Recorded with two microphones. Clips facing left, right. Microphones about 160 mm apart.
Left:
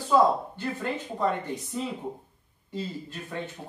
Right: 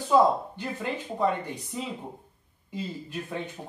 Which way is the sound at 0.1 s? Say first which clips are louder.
Right 1 dB; 15° right (ahead or behind).